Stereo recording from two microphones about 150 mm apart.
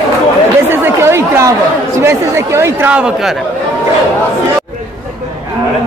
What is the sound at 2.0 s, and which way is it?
Speech, 15° right (ahead or behind).